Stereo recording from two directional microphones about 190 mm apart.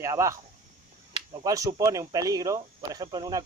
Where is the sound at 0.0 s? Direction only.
15° right (ahead or behind).